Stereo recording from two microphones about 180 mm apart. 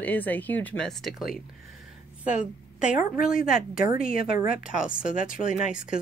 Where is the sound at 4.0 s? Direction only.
50° left (ahead or behind).